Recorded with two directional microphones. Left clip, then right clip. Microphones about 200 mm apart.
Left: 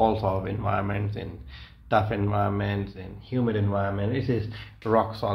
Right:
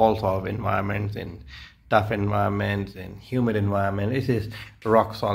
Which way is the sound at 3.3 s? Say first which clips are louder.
Right 2 dB; 40° right (ahead or behind).